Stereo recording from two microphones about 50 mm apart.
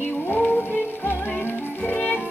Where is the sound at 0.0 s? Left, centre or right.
Left.